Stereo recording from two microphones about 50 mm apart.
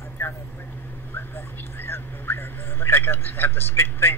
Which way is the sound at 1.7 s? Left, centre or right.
Left.